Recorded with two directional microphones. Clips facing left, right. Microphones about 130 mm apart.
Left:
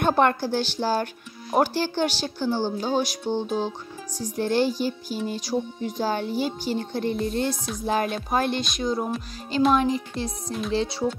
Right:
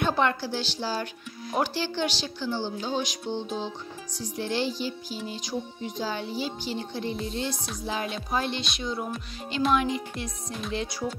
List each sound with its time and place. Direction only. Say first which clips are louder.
0.0 s music: left 5 dB; 50° left (ahead or behind)
9.8 s speech: left 4 dB; 35° left (ahead or behind)
10.7 s music: left 6 dB; 30° left (ahead or behind)